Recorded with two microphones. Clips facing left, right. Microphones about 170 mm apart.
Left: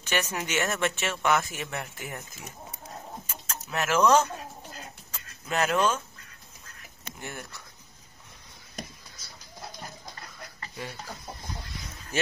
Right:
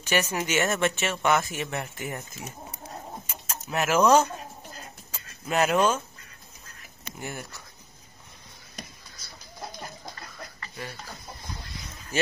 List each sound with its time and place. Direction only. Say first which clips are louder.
0.0 s speech: right 3 dB; 10° right (ahead or behind)
5.5 s speech: right 3 dB; 10° right (ahead or behind)
7.1 s speech: right 3 dB; 5° right (ahead or behind)
10.6 s a sound: left 1 dB; 20° left (ahead or behind)